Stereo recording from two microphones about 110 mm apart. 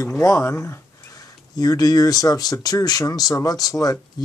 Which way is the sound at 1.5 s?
35° left (ahead or behind).